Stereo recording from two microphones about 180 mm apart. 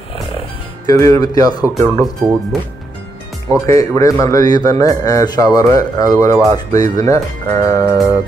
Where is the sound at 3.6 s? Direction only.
15° left (ahead or behind).